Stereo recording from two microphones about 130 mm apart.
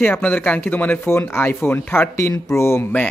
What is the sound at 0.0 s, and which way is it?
A man's voice, 15° left (ahead or behind).